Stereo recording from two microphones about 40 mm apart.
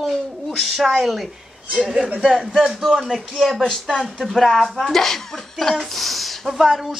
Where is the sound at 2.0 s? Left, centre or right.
Right.